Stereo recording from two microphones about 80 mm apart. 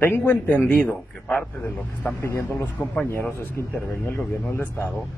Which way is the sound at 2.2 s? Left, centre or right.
Left.